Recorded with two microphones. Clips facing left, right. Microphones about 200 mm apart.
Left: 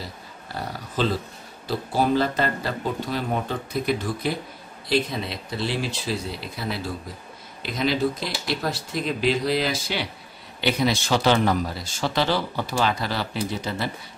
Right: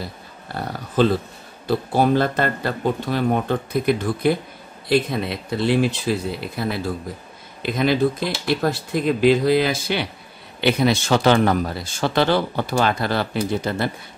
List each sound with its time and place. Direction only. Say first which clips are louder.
0.6 s speech: right 7 dB; 55° right (ahead or behind)